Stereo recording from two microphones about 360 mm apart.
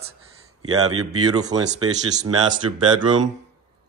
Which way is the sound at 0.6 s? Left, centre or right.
Right.